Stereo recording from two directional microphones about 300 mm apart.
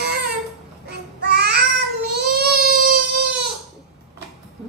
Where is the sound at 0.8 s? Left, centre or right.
Right.